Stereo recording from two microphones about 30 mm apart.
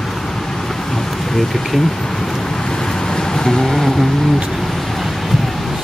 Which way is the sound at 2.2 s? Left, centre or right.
Left.